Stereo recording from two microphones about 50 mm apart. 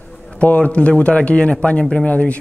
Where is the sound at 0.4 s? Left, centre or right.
Left.